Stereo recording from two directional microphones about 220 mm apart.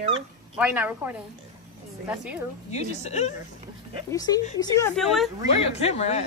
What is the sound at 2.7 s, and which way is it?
Speech, 30° left (ahead or behind).